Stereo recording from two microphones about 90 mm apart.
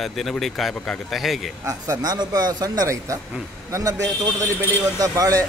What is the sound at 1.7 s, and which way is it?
A man's voice, 40° right (ahead or behind).